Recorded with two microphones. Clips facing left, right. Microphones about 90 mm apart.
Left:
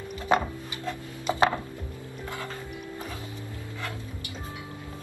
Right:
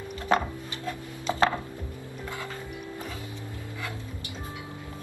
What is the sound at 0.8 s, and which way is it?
Speech, 15° left (ahead or behind).